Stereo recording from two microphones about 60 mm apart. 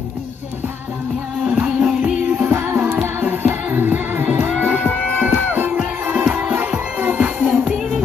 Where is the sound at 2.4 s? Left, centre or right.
Right.